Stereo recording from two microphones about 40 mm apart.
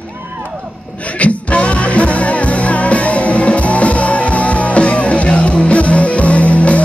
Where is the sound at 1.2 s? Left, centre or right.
Left.